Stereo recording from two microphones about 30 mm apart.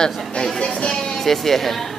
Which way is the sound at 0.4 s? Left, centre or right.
Left.